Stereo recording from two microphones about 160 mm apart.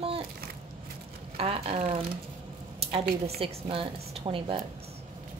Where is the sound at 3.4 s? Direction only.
35° right (ahead or behind).